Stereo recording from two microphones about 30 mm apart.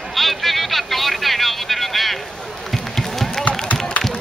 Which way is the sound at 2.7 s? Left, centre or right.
Centre.